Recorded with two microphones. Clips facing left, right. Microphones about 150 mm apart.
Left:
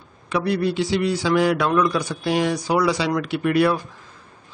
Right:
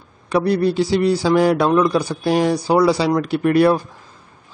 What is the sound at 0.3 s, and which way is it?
A man's voice, 35° right (ahead or behind).